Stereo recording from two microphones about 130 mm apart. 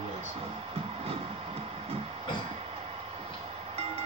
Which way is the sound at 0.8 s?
50° right (ahead or behind).